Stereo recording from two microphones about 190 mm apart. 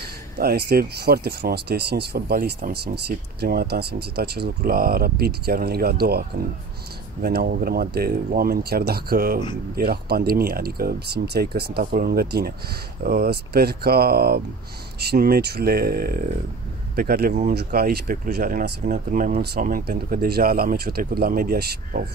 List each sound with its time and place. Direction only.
0.4 s speech: 55° right (ahead or behind)